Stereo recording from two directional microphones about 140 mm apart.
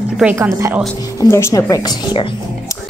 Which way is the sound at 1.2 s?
25° left (ahead or behind).